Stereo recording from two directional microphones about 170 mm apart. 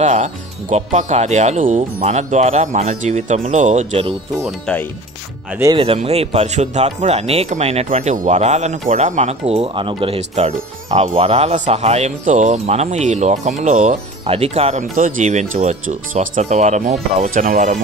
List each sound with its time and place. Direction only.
0.0 s speech: 45° right (ahead or behind)
4.5 s speech: 5° left (ahead or behind)
6.0 s speech: 40° right (ahead or behind)